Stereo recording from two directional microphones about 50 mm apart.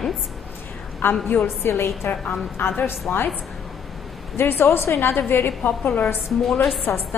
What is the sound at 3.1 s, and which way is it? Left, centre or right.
Speech, left.